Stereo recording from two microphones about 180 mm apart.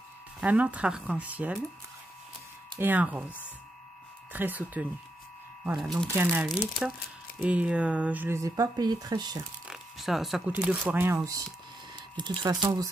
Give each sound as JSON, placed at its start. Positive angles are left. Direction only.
{"t": 0.4, "sound": "speech", "side_deg": -10}
{"t": 2.8, "sound": "speech", "side_deg": -10}
{"t": 5.8, "sound": "speech", "side_deg": 0}
{"t": 6.1, "sound": "speech", "side_deg": -10}
{"t": 9.7, "sound": "zipper", "side_deg": 0}
{"t": 10.6, "sound": "speech", "side_deg": -5}